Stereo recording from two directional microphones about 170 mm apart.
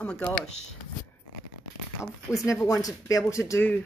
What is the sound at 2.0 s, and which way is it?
Speech, 15° left (ahead or behind).